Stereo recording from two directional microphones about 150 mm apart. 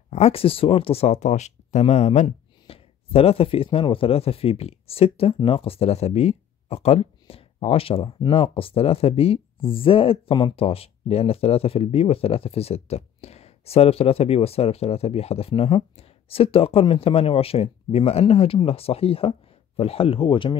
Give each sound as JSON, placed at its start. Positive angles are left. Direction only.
{"t": 0.1, "sound": "speech", "side_deg": 45}